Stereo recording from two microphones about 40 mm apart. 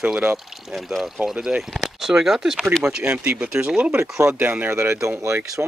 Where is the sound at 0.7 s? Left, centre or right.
Centre.